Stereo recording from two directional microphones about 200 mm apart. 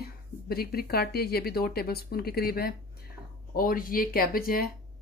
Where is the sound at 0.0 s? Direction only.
50° left (ahead or behind).